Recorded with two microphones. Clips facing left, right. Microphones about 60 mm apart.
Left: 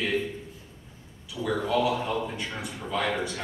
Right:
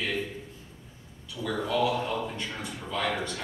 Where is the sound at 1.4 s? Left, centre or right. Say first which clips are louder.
Left 2 dB; centre.